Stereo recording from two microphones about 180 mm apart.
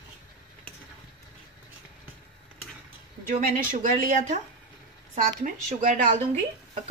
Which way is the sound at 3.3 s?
45° right (ahead or behind).